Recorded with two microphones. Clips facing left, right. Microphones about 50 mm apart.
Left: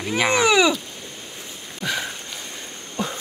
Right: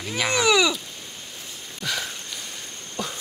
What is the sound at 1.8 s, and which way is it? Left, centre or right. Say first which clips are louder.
Sniff: left 3 dB; left.